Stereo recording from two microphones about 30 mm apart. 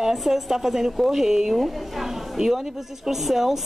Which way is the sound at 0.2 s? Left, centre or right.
Centre.